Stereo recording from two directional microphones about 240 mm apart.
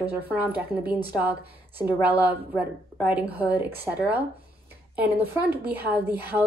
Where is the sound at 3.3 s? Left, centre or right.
Right.